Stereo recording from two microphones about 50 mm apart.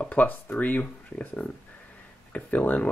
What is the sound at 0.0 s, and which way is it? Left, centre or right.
Speech, left.